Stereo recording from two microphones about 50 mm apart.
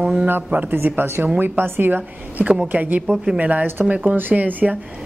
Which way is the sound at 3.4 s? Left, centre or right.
Right.